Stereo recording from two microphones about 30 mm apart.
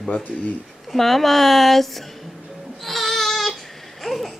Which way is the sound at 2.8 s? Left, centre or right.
Centre.